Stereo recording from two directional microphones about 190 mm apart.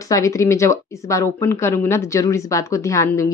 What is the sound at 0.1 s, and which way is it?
Speech, 15° left (ahead or behind).